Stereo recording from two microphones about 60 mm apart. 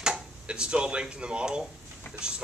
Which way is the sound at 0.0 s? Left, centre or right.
Centre.